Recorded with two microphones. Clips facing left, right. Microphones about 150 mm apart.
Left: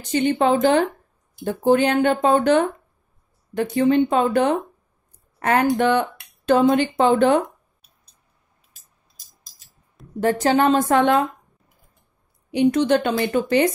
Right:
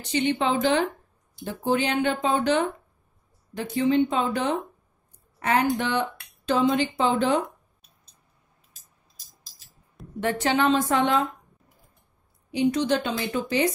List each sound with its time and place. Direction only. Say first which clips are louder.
0.0 s speech: left 5 dB; 45° left (ahead or behind)
10.2 s speech: left 5 dB; 40° left (ahead or behind)
12.4 s speech: left 5 dB; 60° left (ahead or behind)